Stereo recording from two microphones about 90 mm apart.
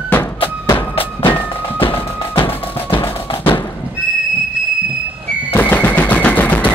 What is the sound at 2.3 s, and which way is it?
Music, 90° left.